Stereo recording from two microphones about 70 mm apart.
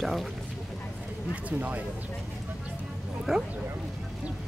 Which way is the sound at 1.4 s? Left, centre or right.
Right.